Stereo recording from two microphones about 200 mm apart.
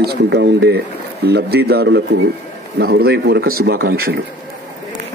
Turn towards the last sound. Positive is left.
turn(degrees=-50)  # may be behind; listen again after turning